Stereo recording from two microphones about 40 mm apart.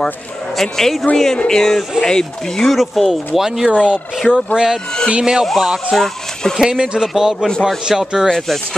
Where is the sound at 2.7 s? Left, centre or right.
Centre.